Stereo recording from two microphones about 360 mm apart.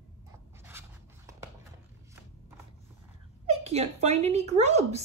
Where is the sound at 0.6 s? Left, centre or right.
Centre.